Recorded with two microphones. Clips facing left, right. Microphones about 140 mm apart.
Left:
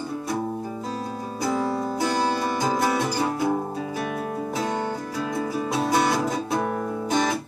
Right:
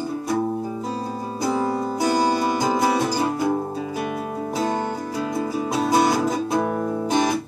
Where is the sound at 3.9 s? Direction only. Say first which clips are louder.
Right 1 dB; 25° right (ahead or behind).